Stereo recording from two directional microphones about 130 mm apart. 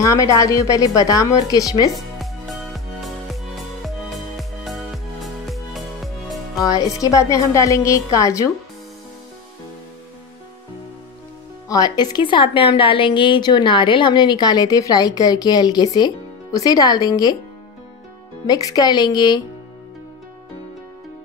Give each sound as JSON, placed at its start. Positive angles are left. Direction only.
{"t": 0.0, "sound": "a woman's voice", "side_deg": 25}
{"t": 2.0, "sound": "music", "side_deg": 0}
{"t": 6.6, "sound": "a woman's voice", "side_deg": 25}
{"t": 11.7, "sound": "a woman's voice", "side_deg": 30}
{"t": 18.5, "sound": "a woman's voice", "side_deg": 30}